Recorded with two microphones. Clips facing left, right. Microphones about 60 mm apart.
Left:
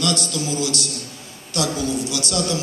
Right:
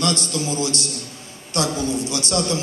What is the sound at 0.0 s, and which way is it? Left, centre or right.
A man's voice, right.